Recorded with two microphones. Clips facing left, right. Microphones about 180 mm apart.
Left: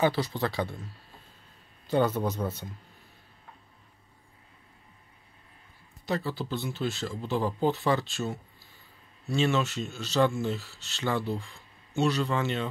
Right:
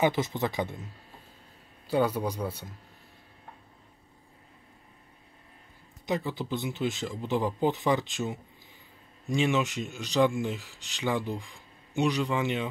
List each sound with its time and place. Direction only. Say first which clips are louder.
0.0 s speech: even; 20° right (ahead or behind)
1.9 s speech: left 1 dB; 10° right (ahead or behind)
6.0 s speech: even; 15° right (ahead or behind)